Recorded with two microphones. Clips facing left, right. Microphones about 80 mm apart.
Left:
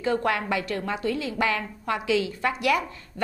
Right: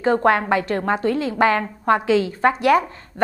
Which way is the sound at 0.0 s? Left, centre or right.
Right.